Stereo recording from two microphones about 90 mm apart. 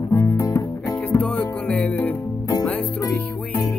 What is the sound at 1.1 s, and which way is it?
Music, 15° left (ahead or behind).